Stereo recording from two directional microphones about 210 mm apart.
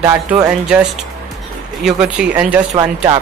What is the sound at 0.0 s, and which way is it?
Speech, 15° right (ahead or behind).